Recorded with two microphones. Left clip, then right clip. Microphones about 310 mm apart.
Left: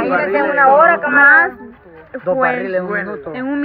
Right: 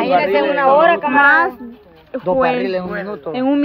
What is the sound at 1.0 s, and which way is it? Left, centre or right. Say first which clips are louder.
A man's voice: left 2 dB; centre.